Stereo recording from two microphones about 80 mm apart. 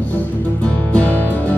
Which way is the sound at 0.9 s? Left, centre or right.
Centre.